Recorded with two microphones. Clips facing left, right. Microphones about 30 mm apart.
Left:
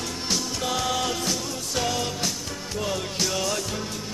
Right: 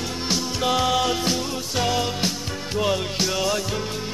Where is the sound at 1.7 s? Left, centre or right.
Centre.